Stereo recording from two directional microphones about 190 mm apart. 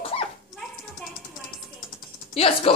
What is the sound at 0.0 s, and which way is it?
Dog, 30° left (ahead or behind).